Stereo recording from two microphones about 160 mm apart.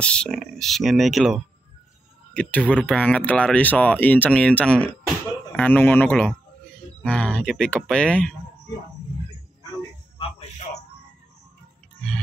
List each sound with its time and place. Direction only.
0.0 s speech: 5° left (ahead or behind)